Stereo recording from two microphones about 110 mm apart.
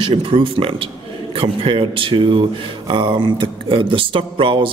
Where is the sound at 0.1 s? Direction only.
55° right (ahead or behind).